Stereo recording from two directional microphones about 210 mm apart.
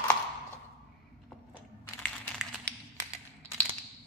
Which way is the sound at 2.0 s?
Centre (ahead or behind).